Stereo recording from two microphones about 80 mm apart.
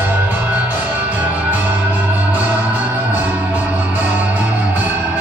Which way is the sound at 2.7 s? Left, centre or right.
Right.